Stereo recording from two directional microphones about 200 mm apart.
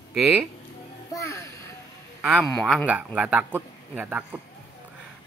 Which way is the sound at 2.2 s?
Centre (ahead or behind).